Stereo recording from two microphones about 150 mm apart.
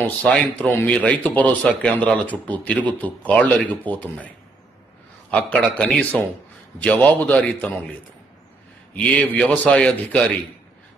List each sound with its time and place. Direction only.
0.0 s speech: 5° left (ahead or behind)
5.3 s speech: 5° left (ahead or behind)
8.9 s speech: 10° left (ahead or behind)